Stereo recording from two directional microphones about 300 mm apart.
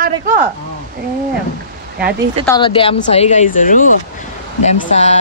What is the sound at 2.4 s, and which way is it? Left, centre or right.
Speech, centre.